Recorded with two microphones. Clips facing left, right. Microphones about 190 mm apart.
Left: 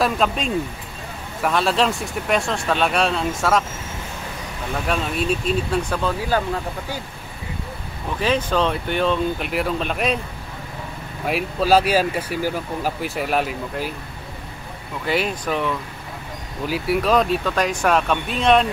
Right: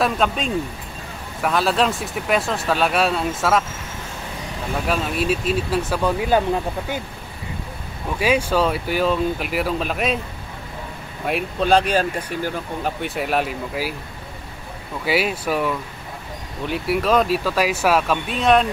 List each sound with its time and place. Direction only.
0.0 s speech: centre (ahead or behind)
4.8 s speech: 5° right (ahead or behind)
6.2 s speech: 20° right (ahead or behind)
8.2 s speech: 10° right (ahead or behind)
11.2 s speech: 5° left (ahead or behind)
15.0 s speech: 5° right (ahead or behind)